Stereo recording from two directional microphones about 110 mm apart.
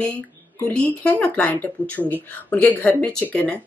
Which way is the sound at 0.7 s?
10° left (ahead or behind).